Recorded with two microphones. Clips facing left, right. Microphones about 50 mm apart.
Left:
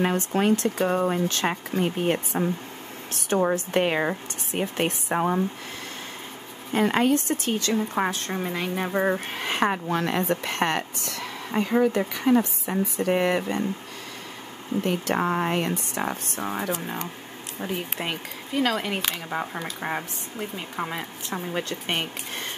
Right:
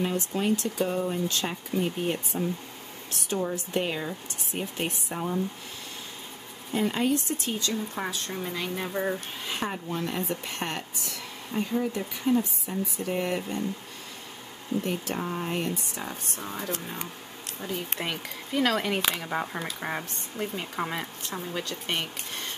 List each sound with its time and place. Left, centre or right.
0.0 s speech: left
6.7 s speech: left
7.7 s speech: left
9.3 s a woman's voice: left
14.8 s a woman's voice: left
16.1 s speech: left
17.6 s speech: left
17.9 s speech: centre
18.5 s speech: centre
21.3 s speech: left